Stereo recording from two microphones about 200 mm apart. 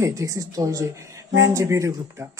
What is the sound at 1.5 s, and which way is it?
Speech, 15° right (ahead or behind).